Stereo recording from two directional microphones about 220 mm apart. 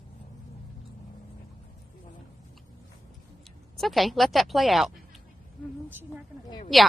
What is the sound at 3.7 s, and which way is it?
Speech, centre (ahead or behind).